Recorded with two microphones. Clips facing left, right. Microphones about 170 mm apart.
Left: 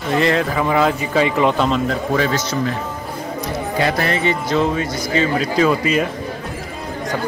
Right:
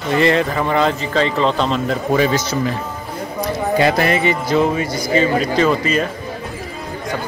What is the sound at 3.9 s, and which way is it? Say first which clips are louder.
A man's voice: right 3 dB; 15° right (ahead or behind).